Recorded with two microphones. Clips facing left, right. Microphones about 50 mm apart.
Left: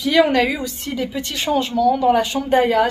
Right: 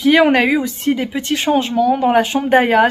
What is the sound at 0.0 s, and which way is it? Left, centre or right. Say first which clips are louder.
Speech: right 4 dB; right.